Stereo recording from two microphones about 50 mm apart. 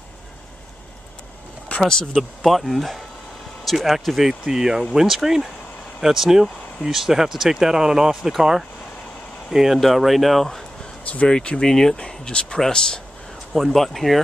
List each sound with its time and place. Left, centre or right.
1.9 s speech: centre
2.4 s speech: centre
11.1 s speech: left
13.5 s speech: centre